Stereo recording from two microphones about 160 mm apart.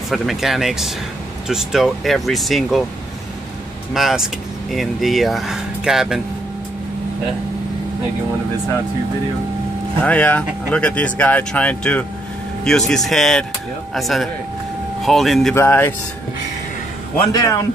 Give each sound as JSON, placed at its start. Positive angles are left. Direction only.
{"t": 0.1, "sound": "speech", "side_deg": 0}
{"t": 3.9, "sound": "speech", "side_deg": 0}
{"t": 10.0, "sound": "speech", "side_deg": 10}
{"t": 15.5, "sound": "speech", "side_deg": 15}
{"t": 17.3, "sound": "a man's voice", "side_deg": 20}